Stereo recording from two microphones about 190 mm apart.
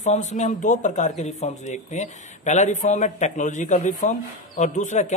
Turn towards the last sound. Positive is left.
turn(degrees=40)  # may be behind; listen again after turning